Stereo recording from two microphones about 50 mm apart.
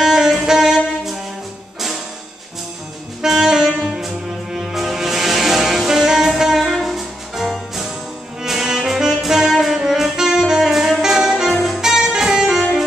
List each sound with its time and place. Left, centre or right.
0.0 s music: centre
3.2 s saxophone: centre
3.9 s music: centre
9.8 s saxophone: centre
11.5 s music: centre